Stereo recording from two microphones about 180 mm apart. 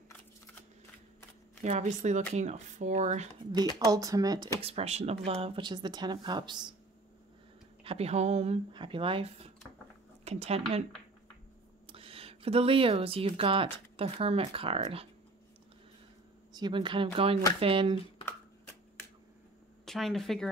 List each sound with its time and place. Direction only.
1.6 s speech: 40° right (ahead or behind)
3.8 s speech: 20° right (ahead or behind)
4.6 s speech: 35° right (ahead or behind)
7.8 s speech: 35° right (ahead or behind)
11.9 s speech: 30° right (ahead or behind)
16.5 s speech: 25° right (ahead or behind)
19.8 s speech: centre (ahead or behind)